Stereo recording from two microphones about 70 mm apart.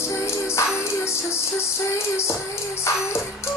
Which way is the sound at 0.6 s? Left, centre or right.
Left.